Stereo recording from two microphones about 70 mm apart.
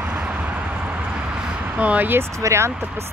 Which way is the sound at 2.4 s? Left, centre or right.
Right.